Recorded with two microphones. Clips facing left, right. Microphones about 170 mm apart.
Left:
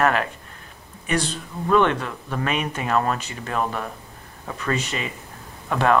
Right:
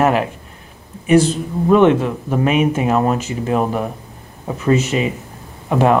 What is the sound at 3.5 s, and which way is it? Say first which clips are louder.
Speech: right 7 dB; 15° right (ahead or behind).